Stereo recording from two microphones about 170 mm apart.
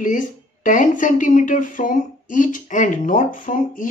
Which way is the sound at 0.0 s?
50° left (ahead or behind).